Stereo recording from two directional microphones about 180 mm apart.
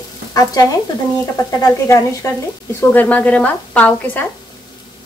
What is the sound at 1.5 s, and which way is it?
A woman's voice, 15° left (ahead or behind).